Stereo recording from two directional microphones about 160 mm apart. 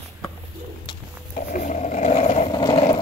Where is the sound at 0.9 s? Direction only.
30° left (ahead or behind).